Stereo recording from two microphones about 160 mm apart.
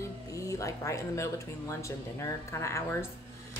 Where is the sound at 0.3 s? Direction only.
20° left (ahead or behind).